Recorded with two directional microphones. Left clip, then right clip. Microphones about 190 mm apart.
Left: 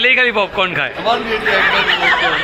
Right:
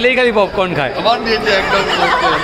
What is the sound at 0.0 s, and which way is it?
A man's voice, 10° right (ahead or behind).